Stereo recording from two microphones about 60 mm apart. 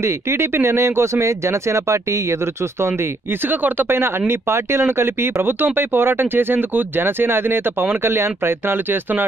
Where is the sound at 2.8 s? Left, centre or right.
Right.